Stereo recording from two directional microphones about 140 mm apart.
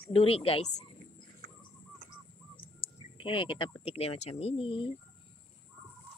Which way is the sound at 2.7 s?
35° left (ahead or behind).